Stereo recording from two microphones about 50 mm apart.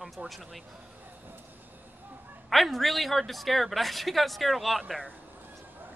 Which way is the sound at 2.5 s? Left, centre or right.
Centre.